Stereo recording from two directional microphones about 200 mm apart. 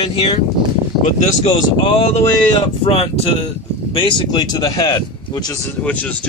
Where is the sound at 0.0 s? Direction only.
25° left (ahead or behind).